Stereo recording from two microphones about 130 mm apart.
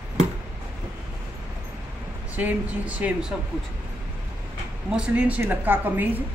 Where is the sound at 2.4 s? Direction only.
10° right (ahead or behind).